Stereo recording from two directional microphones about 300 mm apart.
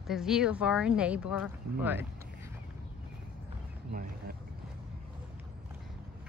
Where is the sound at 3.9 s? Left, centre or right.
Right.